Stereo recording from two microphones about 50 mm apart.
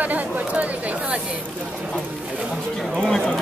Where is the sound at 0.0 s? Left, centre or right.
Right.